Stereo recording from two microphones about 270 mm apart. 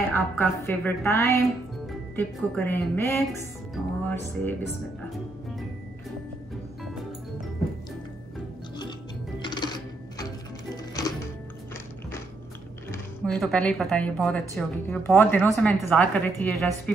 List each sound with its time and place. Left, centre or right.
0.1 s a woman's voice: centre
9.4 s music: centre
12.9 s speech: centre